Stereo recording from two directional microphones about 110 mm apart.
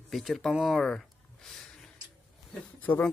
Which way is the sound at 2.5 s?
15° left (ahead or behind).